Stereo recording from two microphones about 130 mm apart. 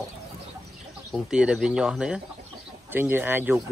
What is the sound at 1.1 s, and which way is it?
Speech, 5° right (ahead or behind).